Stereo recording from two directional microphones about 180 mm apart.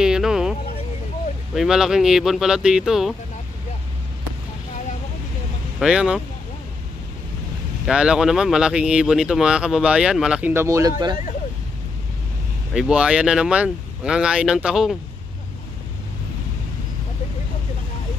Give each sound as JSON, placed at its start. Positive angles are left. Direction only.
{"t": 0.0, "sound": "a sound", "side_deg": -5}
{"t": 1.5, "sound": "speech", "side_deg": 0}
{"t": 5.8, "sound": "speech", "side_deg": -5}
{"t": 7.8, "sound": "speech", "side_deg": -5}
{"t": 12.7, "sound": "speech", "side_deg": -5}